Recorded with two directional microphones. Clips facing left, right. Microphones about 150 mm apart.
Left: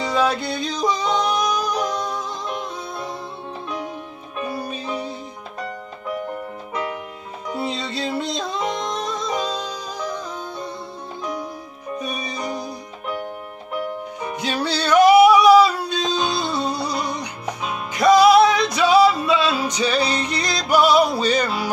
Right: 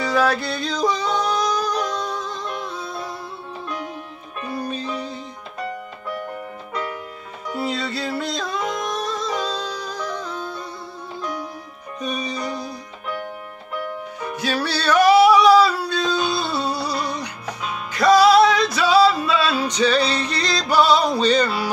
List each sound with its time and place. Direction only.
0.0 s music: 20° left (ahead or behind)
4.5 s music: 10° left (ahead or behind)
6.7 s music: 15° left (ahead or behind)
12.0 s music: 10° left (ahead or behind)
14.2 s music: 15° left (ahead or behind)